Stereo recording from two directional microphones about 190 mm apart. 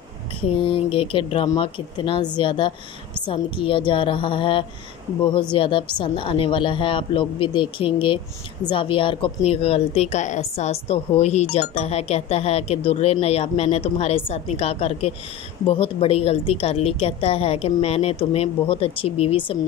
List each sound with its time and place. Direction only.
0.4 s a woman's voice: 25° left (ahead or behind)